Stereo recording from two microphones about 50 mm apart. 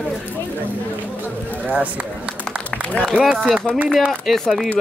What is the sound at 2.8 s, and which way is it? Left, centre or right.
Speech, left.